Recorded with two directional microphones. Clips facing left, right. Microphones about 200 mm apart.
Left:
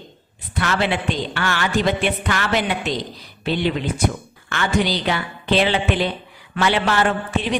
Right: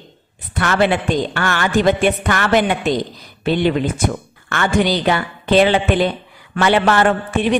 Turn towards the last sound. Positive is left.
turn(degrees=-55)  # may be behind; listen again after turning